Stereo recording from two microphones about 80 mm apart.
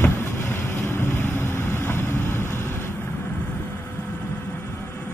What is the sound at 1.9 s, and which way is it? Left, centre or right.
Vehicle, left.